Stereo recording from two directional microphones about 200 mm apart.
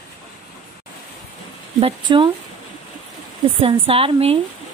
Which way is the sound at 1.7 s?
25° right (ahead or behind).